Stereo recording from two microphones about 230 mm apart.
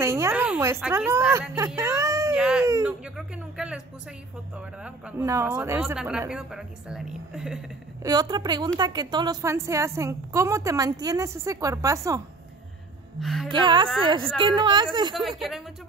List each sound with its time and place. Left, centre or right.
0.0 s a sound: centre
0.8 s a woman's voice: centre
2.3 s speech: centre
8.0 s a woman's voice: centre
13.2 s speech: centre
13.5 s a woman's voice: centre
15.1 s speech: centre